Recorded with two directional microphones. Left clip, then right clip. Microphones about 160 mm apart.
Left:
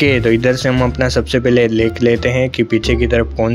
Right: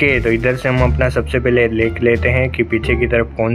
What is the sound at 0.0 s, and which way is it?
Speech, 50° left (ahead or behind).